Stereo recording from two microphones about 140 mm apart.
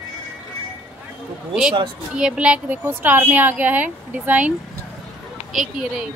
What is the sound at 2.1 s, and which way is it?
A woman's voice, 5° right (ahead or behind).